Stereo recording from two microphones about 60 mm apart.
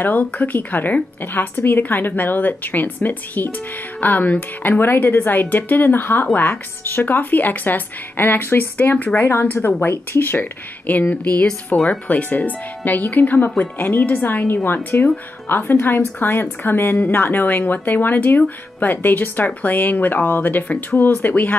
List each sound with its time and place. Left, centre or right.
0.0 s a woman's voice: left
9.3 s a woman's voice: left